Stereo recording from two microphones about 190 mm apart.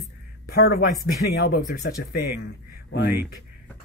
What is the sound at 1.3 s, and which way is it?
Speech, 55° left (ahead or behind).